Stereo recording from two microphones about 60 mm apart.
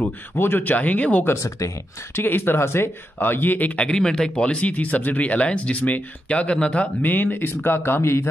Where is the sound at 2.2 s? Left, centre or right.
Left.